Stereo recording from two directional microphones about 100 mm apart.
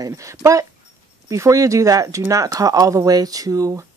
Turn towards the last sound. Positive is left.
turn(degrees=-35)  # may be behind; listen again after turning